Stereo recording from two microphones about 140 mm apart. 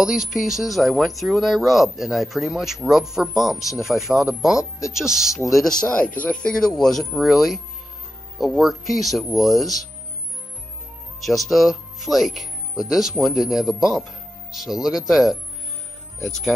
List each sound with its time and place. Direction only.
0.0 s speech: 5° right (ahead or behind)
11.1 s speech: centre (ahead or behind)